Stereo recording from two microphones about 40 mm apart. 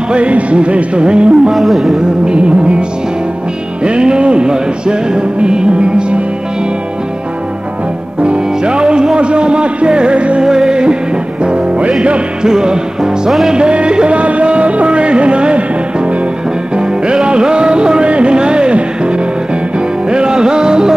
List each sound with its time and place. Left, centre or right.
0.1 s music: right
1.5 s speech: centre
2.2 s music: right
3.8 s music: right
8.2 s music: right
10.4 s music: centre
12.4 s music: centre